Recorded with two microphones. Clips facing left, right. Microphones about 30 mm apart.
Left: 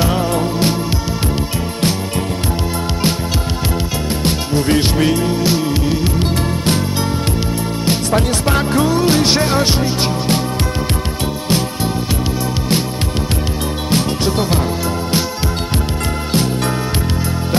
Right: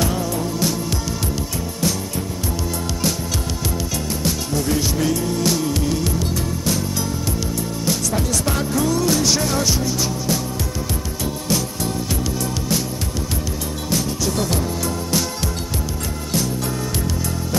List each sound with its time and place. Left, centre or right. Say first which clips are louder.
0.0 s music: left 6 dB; left
4.2 s music: left 5 dB; left
5.4 s music: left 4 dB; left
6.1 s music: left 5 dB; left
7.8 s music: left 6 dB; left
11.4 s music: left 5 dB; left
13.8 s music: left 5 dB; left